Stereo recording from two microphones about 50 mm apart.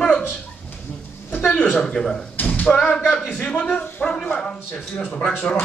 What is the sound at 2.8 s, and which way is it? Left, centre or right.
Speech, left.